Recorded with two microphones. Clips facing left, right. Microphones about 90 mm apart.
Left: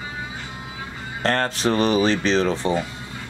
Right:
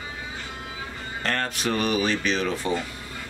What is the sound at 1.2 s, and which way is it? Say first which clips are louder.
A man's voice: left 6 dB; 35° left (ahead or behind).